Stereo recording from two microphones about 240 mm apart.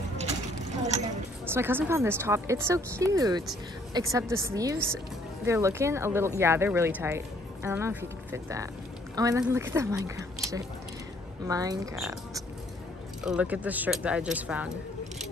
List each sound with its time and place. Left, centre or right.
0.8 s a sound: right
1.4 s speech: centre
11.4 s speech: centre
13.2 s speech: centre